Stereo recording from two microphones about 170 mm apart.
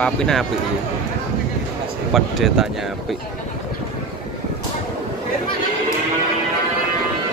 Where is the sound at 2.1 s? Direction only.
Centre (ahead or behind).